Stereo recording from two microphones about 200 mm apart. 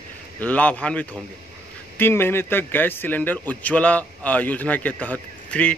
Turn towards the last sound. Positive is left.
turn(degrees=5)  # may be behind; listen again after turning